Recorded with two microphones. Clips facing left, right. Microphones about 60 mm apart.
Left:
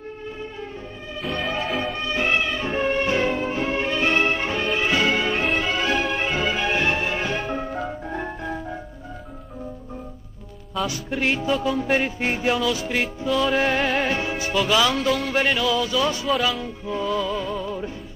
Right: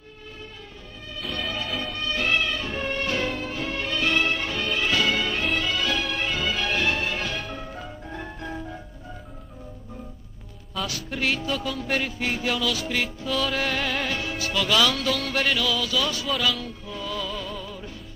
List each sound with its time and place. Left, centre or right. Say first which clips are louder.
1.2 s music: left 4 dB; centre
1.8 s music: left 4 dB; centre
10.9 s music: left 2 dB; left